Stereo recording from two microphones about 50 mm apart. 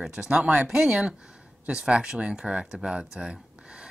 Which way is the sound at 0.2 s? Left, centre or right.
Right.